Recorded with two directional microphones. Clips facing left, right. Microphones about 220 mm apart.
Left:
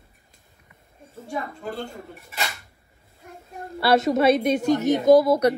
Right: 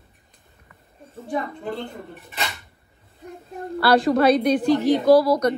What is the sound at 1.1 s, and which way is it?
Speech, centre (ahead or behind).